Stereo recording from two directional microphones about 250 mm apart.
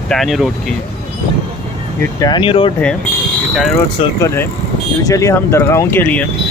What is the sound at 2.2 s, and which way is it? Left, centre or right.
Speech, centre.